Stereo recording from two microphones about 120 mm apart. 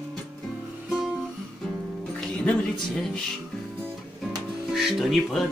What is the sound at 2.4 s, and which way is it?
Speech, 10° left (ahead or behind).